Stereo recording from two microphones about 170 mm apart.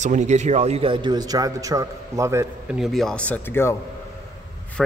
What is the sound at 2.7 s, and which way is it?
Speech, centre (ahead or behind).